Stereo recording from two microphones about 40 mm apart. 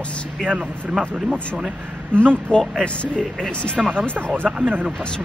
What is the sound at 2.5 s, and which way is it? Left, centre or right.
A man's voice, centre.